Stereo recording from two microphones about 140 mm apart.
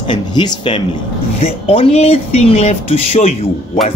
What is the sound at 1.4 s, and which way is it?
Speech, 45° left (ahead or behind).